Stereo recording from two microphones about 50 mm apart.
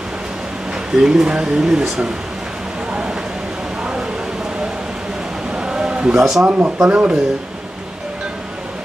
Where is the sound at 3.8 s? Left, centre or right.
Centre.